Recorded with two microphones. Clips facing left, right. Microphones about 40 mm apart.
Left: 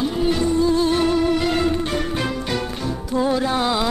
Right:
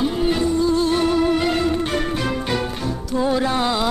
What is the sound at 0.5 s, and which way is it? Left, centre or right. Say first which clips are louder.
Music: left 2 dB; centre.